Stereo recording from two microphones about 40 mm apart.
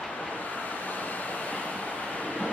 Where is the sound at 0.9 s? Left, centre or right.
Left.